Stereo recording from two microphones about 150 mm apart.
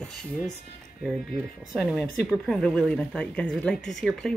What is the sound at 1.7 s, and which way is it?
Speech, centre (ahead or behind).